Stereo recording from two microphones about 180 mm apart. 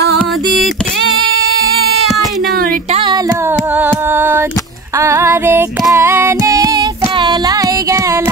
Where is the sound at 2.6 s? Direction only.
50° right (ahead or behind).